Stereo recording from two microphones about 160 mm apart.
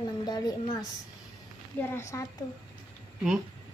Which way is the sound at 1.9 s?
20° left (ahead or behind).